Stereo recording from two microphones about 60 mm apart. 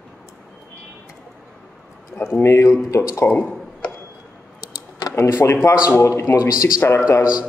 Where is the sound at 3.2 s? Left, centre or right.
Left.